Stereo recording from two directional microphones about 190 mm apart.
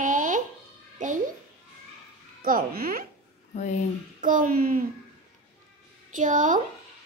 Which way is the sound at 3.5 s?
40° left (ahead or behind).